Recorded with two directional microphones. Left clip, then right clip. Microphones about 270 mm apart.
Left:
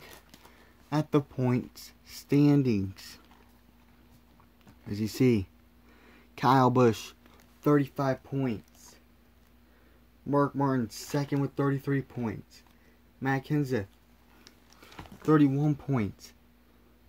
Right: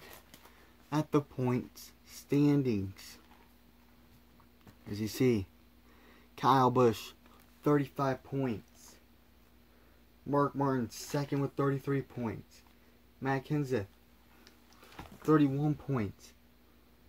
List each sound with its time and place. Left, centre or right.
0.8 s speech: left
4.8 s speech: left
10.3 s speech: left
14.4 s a sound: left